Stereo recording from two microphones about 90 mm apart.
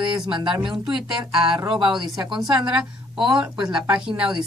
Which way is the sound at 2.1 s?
50° right (ahead or behind).